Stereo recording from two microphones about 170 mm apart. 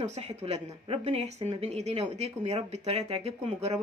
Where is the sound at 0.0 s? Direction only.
40° right (ahead or behind).